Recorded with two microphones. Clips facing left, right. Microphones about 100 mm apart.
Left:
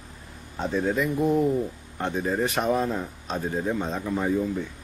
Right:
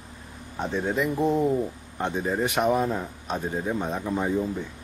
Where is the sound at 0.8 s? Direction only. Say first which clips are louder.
Even; 25° right (ahead or behind).